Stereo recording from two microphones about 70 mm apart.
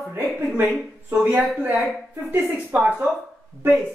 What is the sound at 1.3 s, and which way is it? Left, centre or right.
Music, centre.